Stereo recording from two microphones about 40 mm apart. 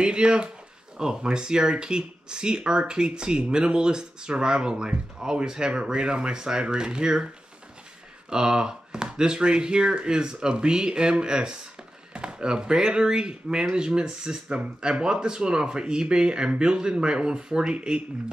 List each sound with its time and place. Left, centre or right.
0.0 s speech: right
8.3 s speech: centre